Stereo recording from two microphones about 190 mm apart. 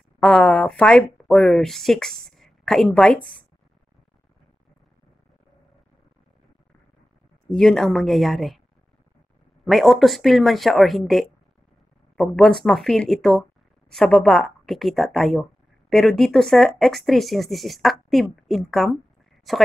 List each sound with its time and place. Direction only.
0.2 s speech: 5° left (ahead or behind)
7.5 s speech: centre (ahead or behind)
9.7 s speech: centre (ahead or behind)